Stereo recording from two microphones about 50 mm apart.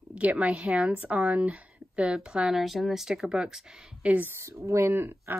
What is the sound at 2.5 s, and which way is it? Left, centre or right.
Speech, centre.